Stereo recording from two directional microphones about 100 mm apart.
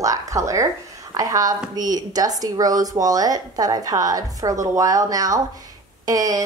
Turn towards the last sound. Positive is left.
turn(degrees=-35)  # may be behind; listen again after turning